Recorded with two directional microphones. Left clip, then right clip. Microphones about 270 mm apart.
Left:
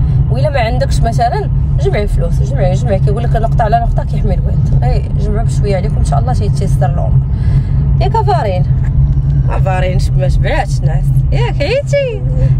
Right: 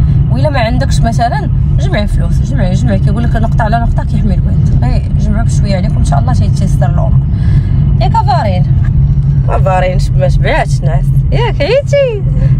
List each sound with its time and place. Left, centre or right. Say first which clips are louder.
0.4 s vehicle: right 1 dB; centre
8.0 s speech: right 2 dB; centre
9.7 s speech: right 5 dB; right